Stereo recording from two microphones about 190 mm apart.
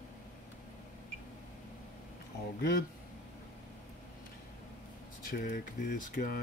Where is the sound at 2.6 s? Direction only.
50° left (ahead or behind).